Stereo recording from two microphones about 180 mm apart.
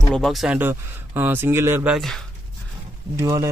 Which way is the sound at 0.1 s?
Centre (ahead or behind).